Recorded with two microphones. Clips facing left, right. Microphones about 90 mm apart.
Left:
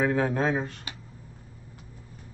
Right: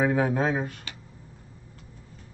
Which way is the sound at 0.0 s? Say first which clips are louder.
Right 1 dB; 10° right (ahead or behind).